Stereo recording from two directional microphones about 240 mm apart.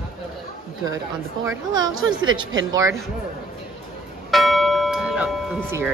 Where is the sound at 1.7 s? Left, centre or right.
Right.